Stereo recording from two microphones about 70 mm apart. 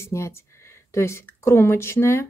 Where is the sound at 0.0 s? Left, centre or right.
Left.